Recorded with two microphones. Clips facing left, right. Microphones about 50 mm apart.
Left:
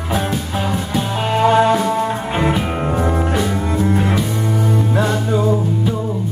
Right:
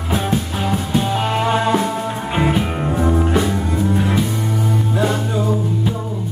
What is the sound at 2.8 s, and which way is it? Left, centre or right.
Music, centre.